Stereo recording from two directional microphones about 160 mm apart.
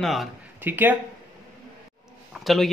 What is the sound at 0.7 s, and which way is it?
Speech, 10° right (ahead or behind).